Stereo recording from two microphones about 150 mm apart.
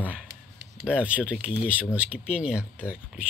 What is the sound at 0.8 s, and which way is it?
Speech, 5° right (ahead or behind).